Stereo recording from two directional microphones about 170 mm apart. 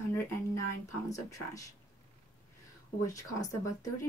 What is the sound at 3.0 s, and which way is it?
Speech, 20° left (ahead or behind).